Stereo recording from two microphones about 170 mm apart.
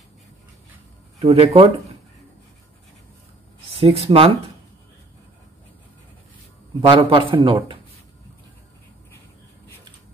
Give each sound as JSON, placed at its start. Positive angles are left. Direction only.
{"t": 1.2, "sound": "speech", "side_deg": -35}
{"t": 3.8, "sound": "speech", "side_deg": -35}
{"t": 6.9, "sound": "speech", "side_deg": -30}